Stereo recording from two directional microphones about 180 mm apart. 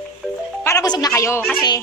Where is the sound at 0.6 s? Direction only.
20° left (ahead or behind).